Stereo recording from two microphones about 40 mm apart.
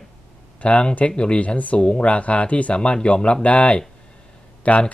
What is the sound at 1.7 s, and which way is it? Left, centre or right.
Speech, left.